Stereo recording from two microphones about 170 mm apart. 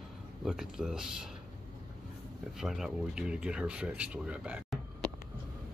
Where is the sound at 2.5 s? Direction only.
Centre (ahead or behind).